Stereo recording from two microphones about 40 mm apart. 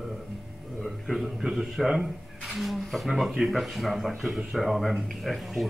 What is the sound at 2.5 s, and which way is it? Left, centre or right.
A man's voice, centre.